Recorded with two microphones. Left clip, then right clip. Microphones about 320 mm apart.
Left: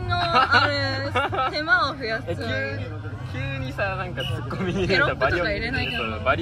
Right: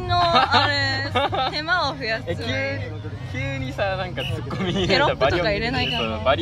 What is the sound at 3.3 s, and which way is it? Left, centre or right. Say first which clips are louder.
Speech: right 3 dB; right.